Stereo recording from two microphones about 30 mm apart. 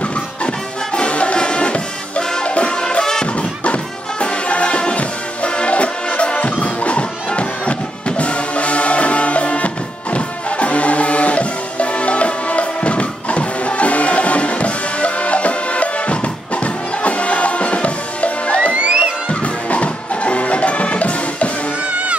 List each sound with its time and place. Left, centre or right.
0.9 s music: left
3.0 s music: left
3.3 s music: left
18.7 s music: right
19.4 s music: left